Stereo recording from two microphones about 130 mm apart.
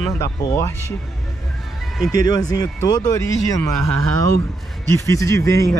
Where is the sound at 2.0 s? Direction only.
30° left (ahead or behind).